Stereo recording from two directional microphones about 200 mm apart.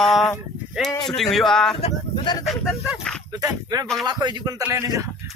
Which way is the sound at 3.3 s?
20° right (ahead or behind).